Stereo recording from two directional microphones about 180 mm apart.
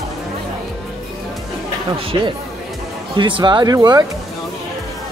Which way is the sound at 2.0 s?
30° right (ahead or behind).